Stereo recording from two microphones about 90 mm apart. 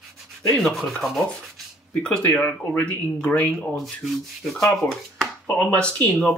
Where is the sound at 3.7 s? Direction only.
Centre (ahead or behind).